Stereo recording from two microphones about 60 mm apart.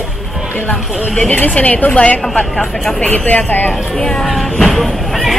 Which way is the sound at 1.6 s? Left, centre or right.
Left.